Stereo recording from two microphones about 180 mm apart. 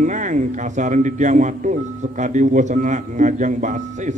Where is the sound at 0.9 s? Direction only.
45° right (ahead or behind).